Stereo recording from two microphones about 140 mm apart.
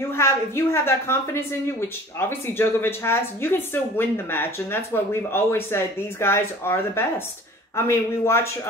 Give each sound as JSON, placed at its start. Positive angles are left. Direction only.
{"t": 0.1, "sound": "a woman's voice", "side_deg": 20}